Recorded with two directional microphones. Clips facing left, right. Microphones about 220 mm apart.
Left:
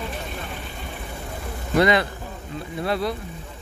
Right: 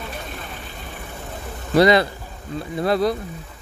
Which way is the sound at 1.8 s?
35° right (ahead or behind).